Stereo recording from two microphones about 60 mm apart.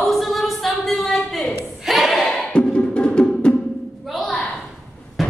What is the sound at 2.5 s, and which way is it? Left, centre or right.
Music, centre.